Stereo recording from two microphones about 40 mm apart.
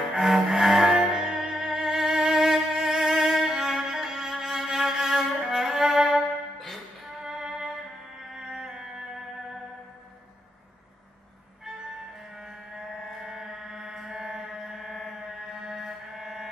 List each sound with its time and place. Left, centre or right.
0.1 s cello: centre
1.6 s music: centre
7.2 s music: centre
13.2 s music: centre